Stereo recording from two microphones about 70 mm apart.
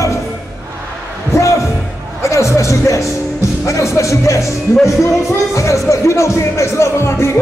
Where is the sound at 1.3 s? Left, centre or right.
Left.